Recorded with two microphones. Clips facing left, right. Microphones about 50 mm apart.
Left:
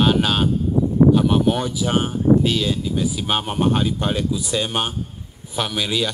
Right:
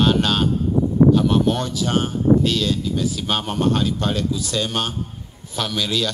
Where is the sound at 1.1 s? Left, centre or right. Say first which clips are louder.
Even; centre.